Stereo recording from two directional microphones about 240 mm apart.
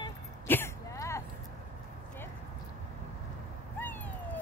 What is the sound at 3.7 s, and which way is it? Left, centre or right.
Cat, centre.